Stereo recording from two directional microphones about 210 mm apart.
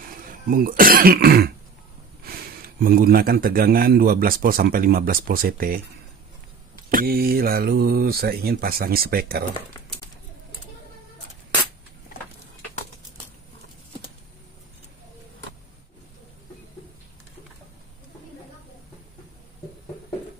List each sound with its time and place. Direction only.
0.5 s speech: 45° right (ahead or behind)
6.9 s speech: 45° right (ahead or behind)